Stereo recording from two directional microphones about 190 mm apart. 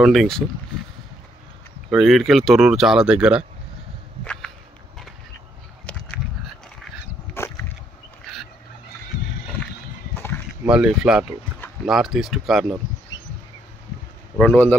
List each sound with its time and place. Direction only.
0.0 s speech: centre (ahead or behind)
1.9 s speech: centre (ahead or behind)
4.2 s walk: 5° left (ahead or behind)
7.3 s a sound: 15° left (ahead or behind)
10.6 s speech: 5° right (ahead or behind)
14.4 s speech: 10° left (ahead or behind)